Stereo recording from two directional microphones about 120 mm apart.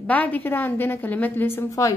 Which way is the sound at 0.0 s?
15° left (ahead or behind).